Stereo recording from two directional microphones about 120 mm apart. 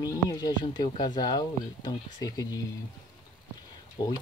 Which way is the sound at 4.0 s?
35° left (ahead or behind).